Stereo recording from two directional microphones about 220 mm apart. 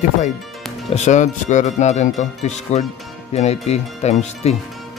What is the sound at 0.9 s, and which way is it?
Speech, 30° left (ahead or behind).